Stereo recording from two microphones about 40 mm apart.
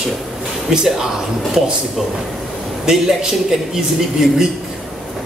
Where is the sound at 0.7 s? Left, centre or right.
Centre.